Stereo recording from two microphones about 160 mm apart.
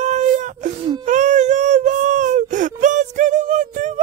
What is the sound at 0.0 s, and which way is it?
Wail, 50° right (ahead or behind).